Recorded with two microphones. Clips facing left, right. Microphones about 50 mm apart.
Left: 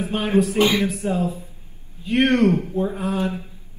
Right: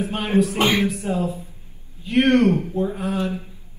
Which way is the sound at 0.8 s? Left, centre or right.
Left.